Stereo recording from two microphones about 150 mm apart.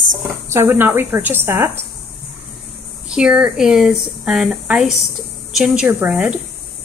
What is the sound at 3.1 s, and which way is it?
A woman's voice, 5° right (ahead or behind).